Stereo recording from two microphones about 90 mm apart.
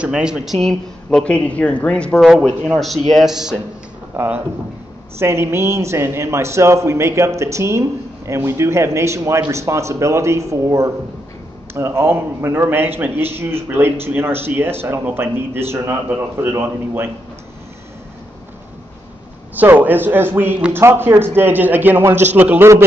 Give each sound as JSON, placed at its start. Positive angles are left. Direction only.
{"t": 0.0, "sound": "speech", "side_deg": -10}
{"t": 0.7, "sound": "speech", "side_deg": 10}
{"t": 5.2, "sound": "a man's voice", "side_deg": -30}
{"t": 19.5, "sound": "a man's voice", "side_deg": -20}